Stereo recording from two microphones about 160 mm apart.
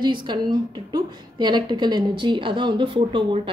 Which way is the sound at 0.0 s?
30° right (ahead or behind).